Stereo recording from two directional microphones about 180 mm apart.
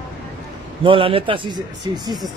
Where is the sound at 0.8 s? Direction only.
30° right (ahead or behind).